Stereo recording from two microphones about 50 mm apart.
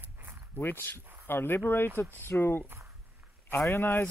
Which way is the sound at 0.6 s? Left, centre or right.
Left.